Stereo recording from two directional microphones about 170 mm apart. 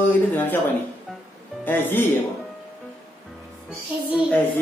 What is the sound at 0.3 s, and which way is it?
Speech, 10° left (ahead or behind).